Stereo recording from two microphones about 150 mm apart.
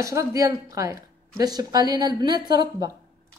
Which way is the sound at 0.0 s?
20° right (ahead or behind).